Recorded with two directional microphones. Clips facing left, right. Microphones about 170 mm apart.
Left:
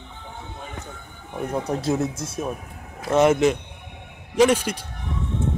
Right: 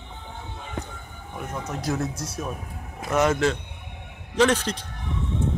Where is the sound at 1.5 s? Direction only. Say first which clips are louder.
Left 5 dB; 35° left (ahead or behind); by 4.8 s 10° left (ahead or behind).